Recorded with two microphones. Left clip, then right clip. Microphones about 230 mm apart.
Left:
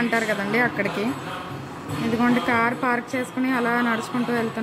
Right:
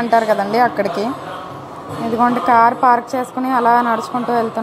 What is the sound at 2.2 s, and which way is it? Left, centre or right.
A woman's voice, centre.